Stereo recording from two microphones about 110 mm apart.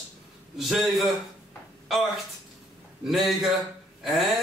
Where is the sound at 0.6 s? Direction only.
Centre (ahead or behind).